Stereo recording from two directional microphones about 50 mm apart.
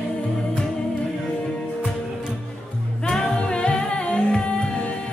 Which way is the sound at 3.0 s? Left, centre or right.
Centre.